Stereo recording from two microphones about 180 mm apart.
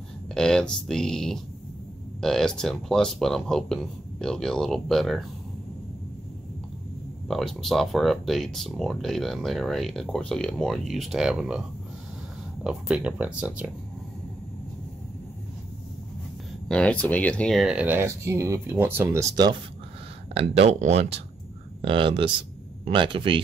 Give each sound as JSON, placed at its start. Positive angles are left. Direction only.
{"t": 0.3, "sound": "speech", "side_deg": 5}
{"t": 7.2, "sound": "speech", "side_deg": 0}
{"t": 12.6, "sound": "speech", "side_deg": -5}
{"t": 16.6, "sound": "speech", "side_deg": 5}
{"t": 20.3, "sound": "speech", "side_deg": -35}